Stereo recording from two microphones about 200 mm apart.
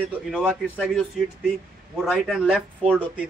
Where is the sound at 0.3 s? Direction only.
5° right (ahead or behind).